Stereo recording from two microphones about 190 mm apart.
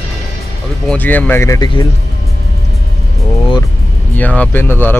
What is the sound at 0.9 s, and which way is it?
Speech, 10° left (ahead or behind).